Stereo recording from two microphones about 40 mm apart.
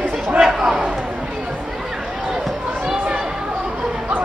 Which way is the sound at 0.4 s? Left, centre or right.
Centre.